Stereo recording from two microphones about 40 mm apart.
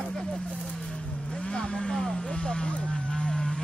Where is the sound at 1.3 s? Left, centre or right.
Left.